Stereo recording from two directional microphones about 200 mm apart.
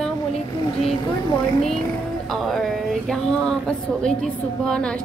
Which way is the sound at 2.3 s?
Centre (ahead or behind).